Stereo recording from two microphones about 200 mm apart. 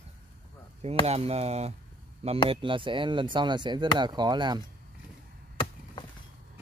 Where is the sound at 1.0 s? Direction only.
30° right (ahead or behind).